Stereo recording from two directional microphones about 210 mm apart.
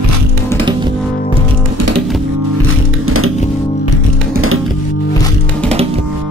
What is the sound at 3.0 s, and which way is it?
Music, 90° right.